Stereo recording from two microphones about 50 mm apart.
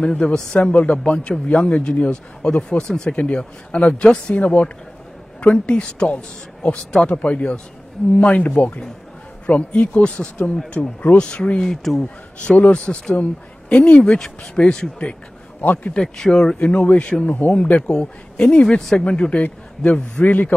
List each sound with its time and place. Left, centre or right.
0.0 s speech: left
11.6 s speech: centre
12.0 s a man's voice: centre
14.1 s speech: centre
15.6 s speech: left
16.0 s speech: centre
16.5 s speech: left
17.5 s speech: left
18.8 s speech: centre
19.0 s speech: left